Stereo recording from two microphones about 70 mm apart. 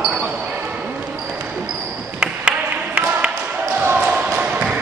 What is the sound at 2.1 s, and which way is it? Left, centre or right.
Ping, centre.